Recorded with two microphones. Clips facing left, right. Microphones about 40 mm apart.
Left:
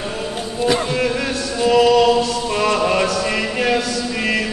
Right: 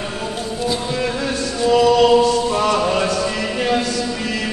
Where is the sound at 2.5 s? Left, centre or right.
Left.